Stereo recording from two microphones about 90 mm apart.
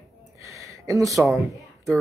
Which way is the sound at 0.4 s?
40° right (ahead or behind).